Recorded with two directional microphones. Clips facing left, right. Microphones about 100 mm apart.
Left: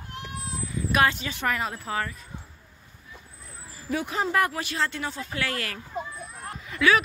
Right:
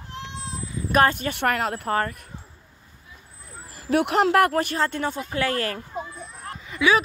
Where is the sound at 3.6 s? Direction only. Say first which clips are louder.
Right 8 dB; 65° right (ahead or behind); by 5.0 s 45° right (ahead or behind).